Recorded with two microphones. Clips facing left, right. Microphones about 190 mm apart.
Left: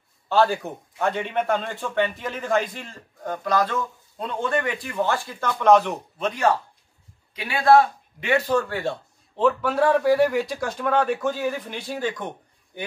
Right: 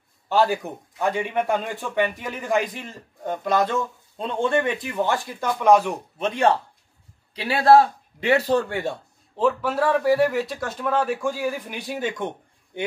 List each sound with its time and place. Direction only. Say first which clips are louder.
0.3 s a man's voice: even; 15° right (ahead or behind)
6.1 s a man's voice: right 2 dB; 25° right (ahead or behind)
8.6 s speech: even; 20° right (ahead or behind)
9.4 s speech: left 1 dB; 5° right (ahead or behind); by 12.3 s 25° right (ahead or behind)